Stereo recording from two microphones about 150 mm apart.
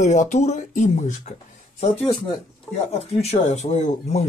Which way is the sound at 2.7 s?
15° left (ahead or behind).